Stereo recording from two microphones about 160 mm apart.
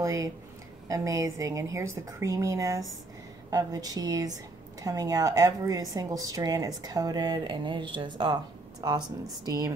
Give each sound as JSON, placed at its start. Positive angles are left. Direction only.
{"t": 0.0, "sound": "a woman's voice", "side_deg": -20}